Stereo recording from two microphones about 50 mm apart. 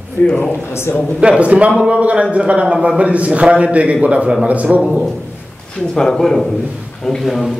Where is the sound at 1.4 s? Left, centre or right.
Right.